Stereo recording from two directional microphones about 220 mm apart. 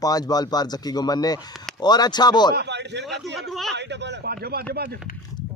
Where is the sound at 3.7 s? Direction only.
50° right (ahead or behind).